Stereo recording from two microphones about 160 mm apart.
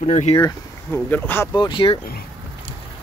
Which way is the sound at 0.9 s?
10° left (ahead or behind).